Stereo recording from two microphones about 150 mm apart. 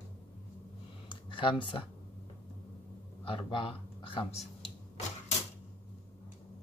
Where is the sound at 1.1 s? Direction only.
35° left (ahead or behind).